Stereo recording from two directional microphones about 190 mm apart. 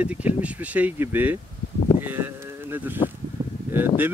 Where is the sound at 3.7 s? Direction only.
10° right (ahead or behind).